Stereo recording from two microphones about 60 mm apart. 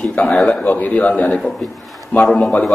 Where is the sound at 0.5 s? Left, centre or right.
Left.